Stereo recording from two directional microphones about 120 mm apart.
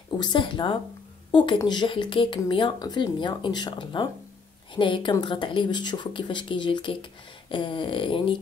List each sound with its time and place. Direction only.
0.2 s speech: 45° left (ahead or behind)